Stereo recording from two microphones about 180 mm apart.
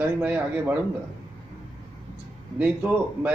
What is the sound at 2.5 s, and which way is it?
Speech, 10° right (ahead or behind).